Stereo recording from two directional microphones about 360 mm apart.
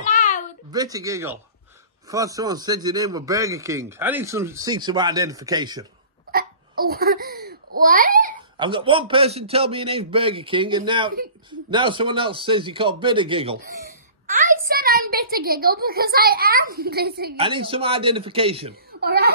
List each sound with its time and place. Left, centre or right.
0.0 s a sound: left
0.7 s a man's voice: centre
6.3 s a man's voice: right
17.4 s a man's voice: centre